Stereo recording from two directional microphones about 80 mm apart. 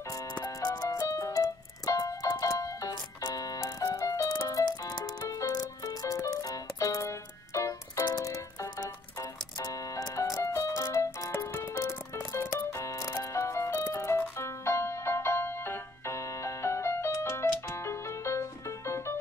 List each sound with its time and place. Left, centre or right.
0.1 s music: left